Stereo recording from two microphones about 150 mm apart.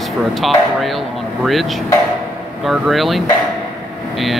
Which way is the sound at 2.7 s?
Centre (ahead or behind).